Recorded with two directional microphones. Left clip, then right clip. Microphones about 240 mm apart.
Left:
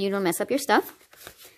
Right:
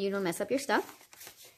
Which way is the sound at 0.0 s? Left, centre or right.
Left.